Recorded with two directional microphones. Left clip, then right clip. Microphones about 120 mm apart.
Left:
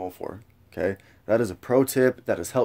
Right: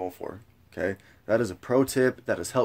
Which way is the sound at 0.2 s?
40° left (ahead or behind).